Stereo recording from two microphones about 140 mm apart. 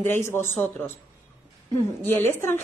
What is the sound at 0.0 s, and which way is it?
Speech, 15° left (ahead or behind).